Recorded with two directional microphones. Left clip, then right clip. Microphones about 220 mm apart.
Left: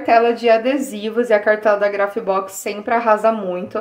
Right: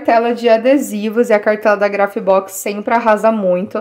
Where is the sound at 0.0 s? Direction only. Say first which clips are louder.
Right 1 dB; 40° right (ahead or behind).